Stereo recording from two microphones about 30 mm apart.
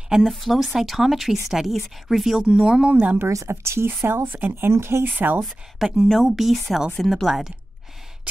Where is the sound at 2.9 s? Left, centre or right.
Right.